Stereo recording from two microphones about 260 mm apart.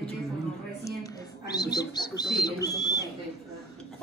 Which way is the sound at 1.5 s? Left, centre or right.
Centre.